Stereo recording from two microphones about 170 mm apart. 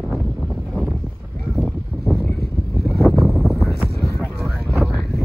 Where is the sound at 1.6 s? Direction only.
Centre (ahead or behind).